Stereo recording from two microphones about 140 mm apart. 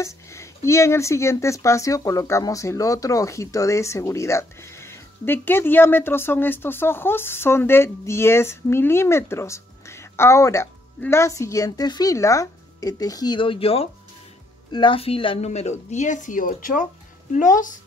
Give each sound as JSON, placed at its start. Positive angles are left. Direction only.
{"t": 0.0, "sound": "a woman's voice", "side_deg": 20}